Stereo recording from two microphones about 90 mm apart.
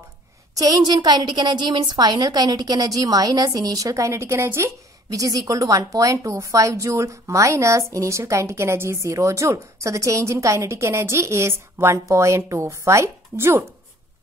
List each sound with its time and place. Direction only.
0.6 s a woman's voice: 50° right (ahead or behind); by 4.6 s 30° right (ahead or behind)
5.1 s a woman's voice: 40° right (ahead or behind)